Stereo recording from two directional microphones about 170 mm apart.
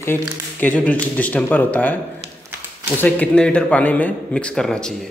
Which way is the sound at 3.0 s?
10° left (ahead or behind).